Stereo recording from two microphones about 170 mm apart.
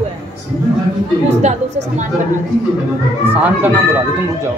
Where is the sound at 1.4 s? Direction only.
45° right (ahead or behind).